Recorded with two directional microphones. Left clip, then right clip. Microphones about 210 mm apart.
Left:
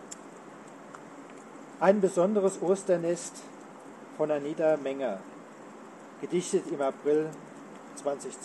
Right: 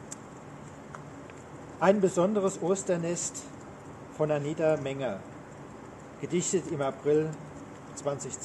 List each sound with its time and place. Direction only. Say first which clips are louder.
1.8 s speech: left 1 dB; 15° left (ahead or behind)
4.2 s speech: even; 15° left (ahead or behind)
6.2 s speech: left 1 dB; 15° left (ahead or behind)